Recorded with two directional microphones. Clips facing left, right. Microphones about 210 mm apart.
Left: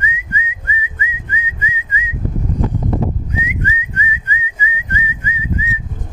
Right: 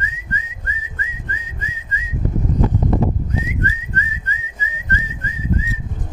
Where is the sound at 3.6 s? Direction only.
10° left (ahead or behind).